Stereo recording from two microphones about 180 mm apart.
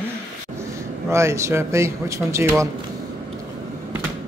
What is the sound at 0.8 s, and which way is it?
Speech, 15° right (ahead or behind).